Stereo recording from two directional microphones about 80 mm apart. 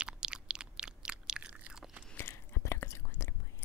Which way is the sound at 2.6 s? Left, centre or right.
Left.